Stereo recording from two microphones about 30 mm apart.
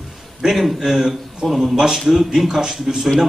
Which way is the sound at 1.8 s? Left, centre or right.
Centre.